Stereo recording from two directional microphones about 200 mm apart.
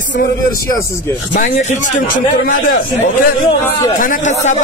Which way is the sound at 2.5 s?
40° left (ahead or behind).